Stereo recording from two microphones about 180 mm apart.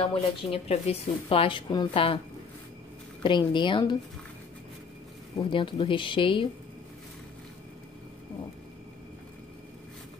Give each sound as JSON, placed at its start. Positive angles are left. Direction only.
{"t": 0.0, "sound": "speech", "side_deg": 35}
{"t": 3.2, "sound": "speech", "side_deg": 25}
{"t": 5.4, "sound": "speech", "side_deg": 30}